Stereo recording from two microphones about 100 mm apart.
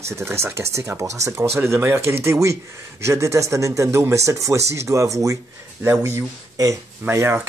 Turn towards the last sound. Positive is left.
turn(degrees=-25)  # may be behind; listen again after turning